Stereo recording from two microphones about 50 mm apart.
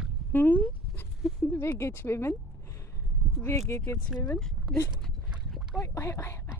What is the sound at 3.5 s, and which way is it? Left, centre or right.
Speech, left.